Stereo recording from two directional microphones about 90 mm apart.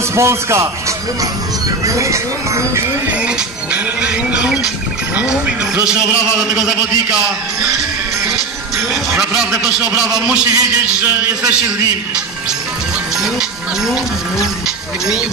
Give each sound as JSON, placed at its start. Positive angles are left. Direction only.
{"t": 0.1, "sound": "speech", "side_deg": -30}
{"t": 1.9, "sound": "speech", "side_deg": -35}
{"t": 3.7, "sound": "a man's voice", "side_deg": -15}
{"t": 6.5, "sound": "a man's voice", "side_deg": -10}
{"t": 9.2, "sound": "a man's voice", "side_deg": -5}
{"t": 13.2, "sound": "music", "side_deg": -5}